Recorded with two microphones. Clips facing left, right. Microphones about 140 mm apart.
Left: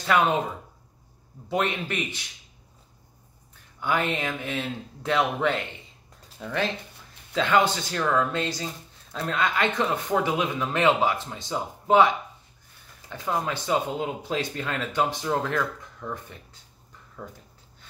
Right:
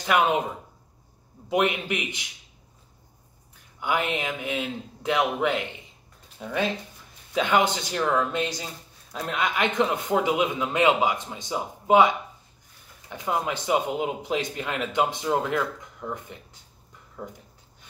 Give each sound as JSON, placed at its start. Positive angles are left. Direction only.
{"t": 0.0, "sound": "speech", "side_deg": -15}
{"t": 1.5, "sound": "speech", "side_deg": -15}
{"t": 3.8, "sound": "speech", "side_deg": -15}